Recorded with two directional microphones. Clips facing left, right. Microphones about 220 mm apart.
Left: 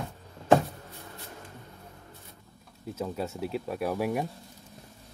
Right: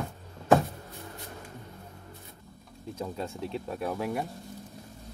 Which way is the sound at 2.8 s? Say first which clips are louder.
Left 2 dB; centre (ahead or behind).